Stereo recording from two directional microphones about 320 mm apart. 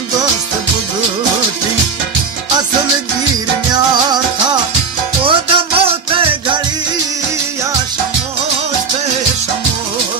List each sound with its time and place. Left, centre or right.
5.2 s music: centre